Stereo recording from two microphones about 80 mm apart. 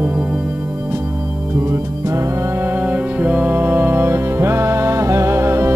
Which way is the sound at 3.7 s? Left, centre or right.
Right.